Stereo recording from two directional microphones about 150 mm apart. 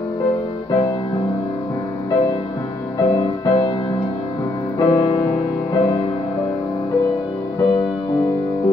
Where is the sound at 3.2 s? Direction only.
30° left (ahead or behind).